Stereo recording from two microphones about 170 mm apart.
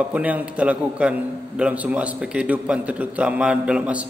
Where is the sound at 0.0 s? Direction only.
10° right (ahead or behind).